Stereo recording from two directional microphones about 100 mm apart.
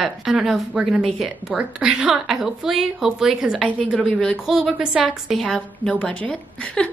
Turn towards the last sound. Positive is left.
turn(degrees=5)  # may be behind; listen again after turning